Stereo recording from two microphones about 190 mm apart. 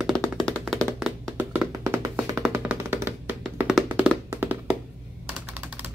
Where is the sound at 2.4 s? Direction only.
10° right (ahead or behind).